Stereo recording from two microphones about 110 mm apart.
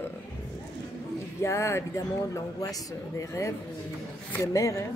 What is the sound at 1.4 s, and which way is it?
Speech, 25° left (ahead or behind).